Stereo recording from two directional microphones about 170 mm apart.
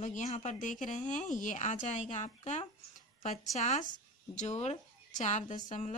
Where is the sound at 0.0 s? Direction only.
45° left (ahead or behind).